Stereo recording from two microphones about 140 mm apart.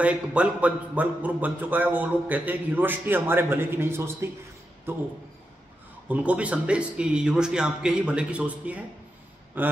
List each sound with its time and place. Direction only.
0.0 s speech: 10° right (ahead or behind)
6.0 s speech: 10° right (ahead or behind)